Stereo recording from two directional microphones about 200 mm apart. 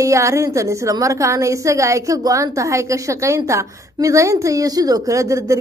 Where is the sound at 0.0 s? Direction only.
15° right (ahead or behind).